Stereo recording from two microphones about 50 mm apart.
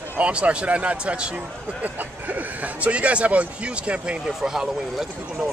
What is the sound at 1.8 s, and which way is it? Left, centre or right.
Speech, right.